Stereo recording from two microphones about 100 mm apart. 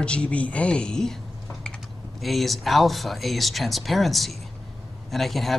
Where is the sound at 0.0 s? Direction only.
10° left (ahead or behind).